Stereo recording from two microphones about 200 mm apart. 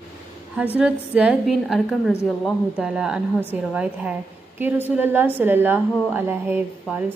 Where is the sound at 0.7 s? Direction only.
5° right (ahead or behind).